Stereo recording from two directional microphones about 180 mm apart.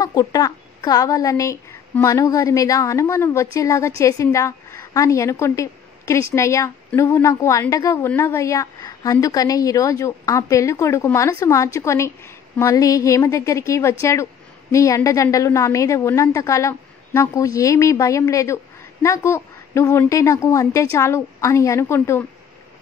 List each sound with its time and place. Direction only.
0.0 s a woman's voice: 20° left (ahead or behind)